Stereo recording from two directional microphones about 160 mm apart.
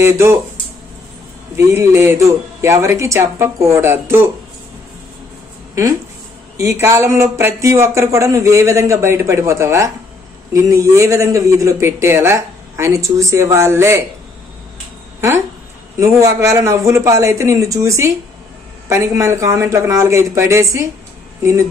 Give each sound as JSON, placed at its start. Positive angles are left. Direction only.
{"t": 0.0, "sound": "speech", "side_deg": -15}
{"t": 1.6, "sound": "speech", "side_deg": -15}
{"t": 6.5, "sound": "a man's voice", "side_deg": -15}
{"t": 15.1, "sound": "a man's voice", "side_deg": -15}